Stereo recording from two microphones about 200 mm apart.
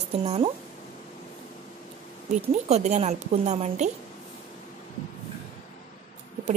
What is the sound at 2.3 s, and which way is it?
Speech, 35° right (ahead or behind).